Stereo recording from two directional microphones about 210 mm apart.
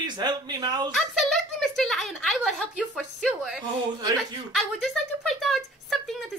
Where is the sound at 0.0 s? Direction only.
20° right (ahead or behind).